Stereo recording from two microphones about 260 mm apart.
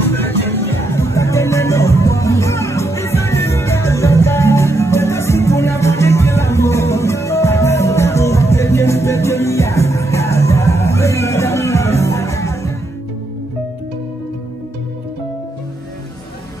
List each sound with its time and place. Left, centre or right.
0.1 s music: centre